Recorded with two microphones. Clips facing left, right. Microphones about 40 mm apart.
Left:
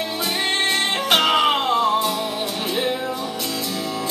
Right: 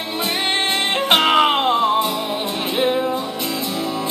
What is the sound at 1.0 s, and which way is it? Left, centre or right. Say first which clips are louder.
Music: right 3 dB; right.